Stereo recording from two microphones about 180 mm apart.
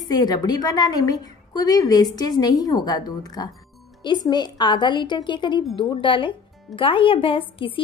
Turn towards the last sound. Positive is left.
turn(degrees=30)  # may be behind; listen again after turning